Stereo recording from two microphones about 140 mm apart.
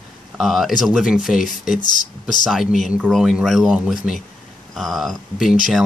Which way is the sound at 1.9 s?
70° left (ahead or behind).